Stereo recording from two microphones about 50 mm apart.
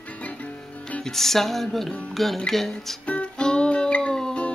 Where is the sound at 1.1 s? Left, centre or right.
Centre.